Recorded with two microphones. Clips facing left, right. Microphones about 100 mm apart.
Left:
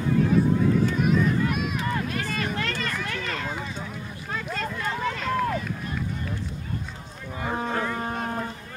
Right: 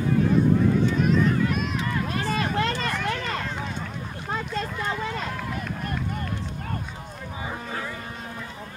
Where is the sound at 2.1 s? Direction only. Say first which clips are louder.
Right 3 dB; 30° right (ahead or behind).